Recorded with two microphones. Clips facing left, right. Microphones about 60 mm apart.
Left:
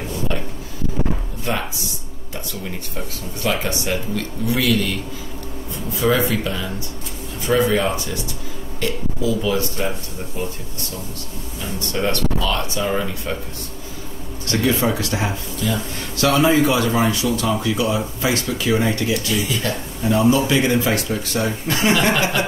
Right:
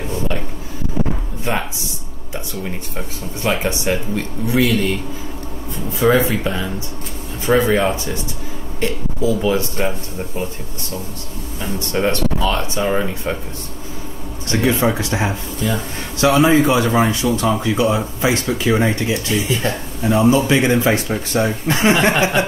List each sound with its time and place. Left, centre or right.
1.5 s speech: centre
3.4 s speech: right
5.9 s speech: right
11.9 s speech: right
14.5 s speech: right
16.2 s speech: right